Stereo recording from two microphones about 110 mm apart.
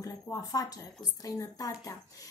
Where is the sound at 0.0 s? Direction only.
35° left (ahead or behind).